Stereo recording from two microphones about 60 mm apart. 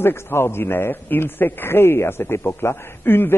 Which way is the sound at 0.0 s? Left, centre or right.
Left.